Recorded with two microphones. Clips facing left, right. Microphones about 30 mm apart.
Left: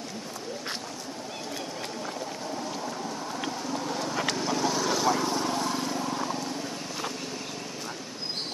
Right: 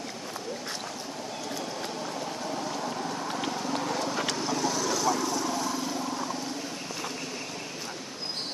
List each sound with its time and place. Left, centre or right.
4.0 s vehicle: centre
4.3 s vehicle: centre
4.8 s lawn mower: left